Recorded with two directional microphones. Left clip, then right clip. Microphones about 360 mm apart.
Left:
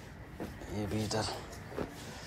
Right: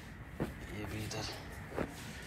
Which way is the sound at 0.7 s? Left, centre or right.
Centre.